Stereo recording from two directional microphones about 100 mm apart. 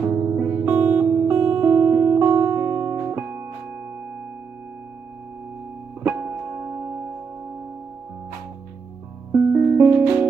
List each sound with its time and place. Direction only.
0.2 s music: 15° right (ahead or behind)
6.0 s music: 20° right (ahead or behind)
9.3 s music: 20° right (ahead or behind)